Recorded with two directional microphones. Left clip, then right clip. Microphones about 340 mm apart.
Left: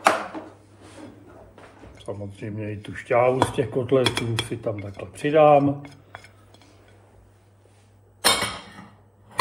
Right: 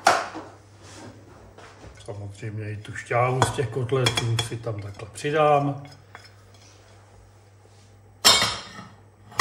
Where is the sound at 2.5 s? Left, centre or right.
Centre.